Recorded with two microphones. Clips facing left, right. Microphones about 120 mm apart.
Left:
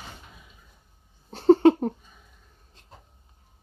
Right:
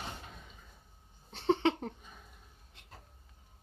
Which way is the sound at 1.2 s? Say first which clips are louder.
Left 13 dB; 40° left (ahead or behind).